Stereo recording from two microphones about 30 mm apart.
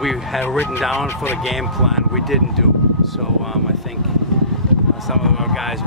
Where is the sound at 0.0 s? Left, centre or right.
Centre.